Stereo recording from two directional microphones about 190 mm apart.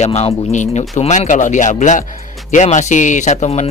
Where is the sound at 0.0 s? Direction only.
35° left (ahead or behind).